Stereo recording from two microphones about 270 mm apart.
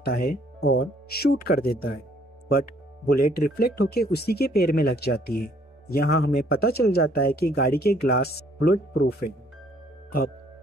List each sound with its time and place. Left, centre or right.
0.0 s speech: left